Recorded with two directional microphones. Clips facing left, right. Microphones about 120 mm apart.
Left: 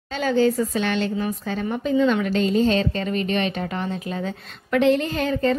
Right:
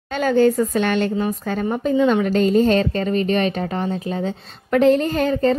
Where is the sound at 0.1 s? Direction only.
50° right (ahead or behind).